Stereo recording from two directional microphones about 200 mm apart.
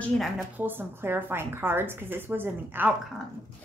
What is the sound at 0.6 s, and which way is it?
A woman's voice, 10° right (ahead or behind).